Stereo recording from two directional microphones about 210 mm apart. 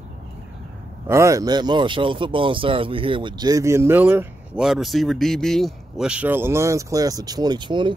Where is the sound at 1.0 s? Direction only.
15° right (ahead or behind).